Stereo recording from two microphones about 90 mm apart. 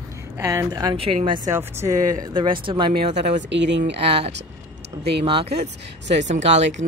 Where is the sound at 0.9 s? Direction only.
80° right.